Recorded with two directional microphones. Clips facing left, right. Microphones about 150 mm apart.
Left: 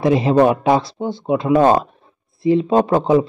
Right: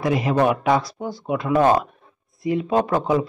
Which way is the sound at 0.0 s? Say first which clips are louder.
Left 6 dB; 30° left (ahead or behind).